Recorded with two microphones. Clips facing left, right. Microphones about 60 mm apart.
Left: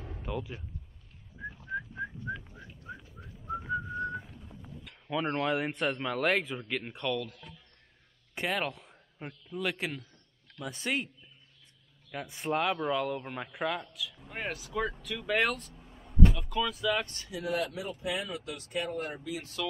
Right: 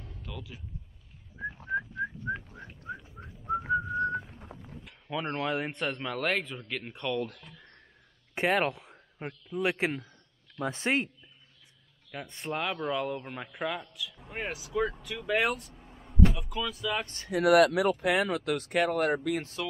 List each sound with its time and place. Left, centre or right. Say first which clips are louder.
0.0 s a sound: left 7 dB; left
1.4 s whistling: right 5 dB; right
4.6 s speech: right 1 dB; centre
8.4 s speech: right 6 dB; right
12.1 s a man's voice: left 3 dB; centre
16.0 s a sound: right 1 dB; centre
17.0 s speech: even; right
17.3 s speech: right 13 dB; right